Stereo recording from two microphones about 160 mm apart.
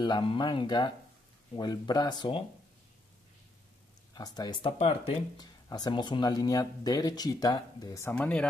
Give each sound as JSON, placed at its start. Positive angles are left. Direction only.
{"t": 0.0, "sound": "speech", "side_deg": 30}
{"t": 4.1, "sound": "speech", "side_deg": 25}
{"t": 5.4, "sound": "speech", "side_deg": 25}